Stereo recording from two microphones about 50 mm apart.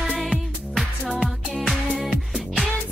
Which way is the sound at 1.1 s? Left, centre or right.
Centre.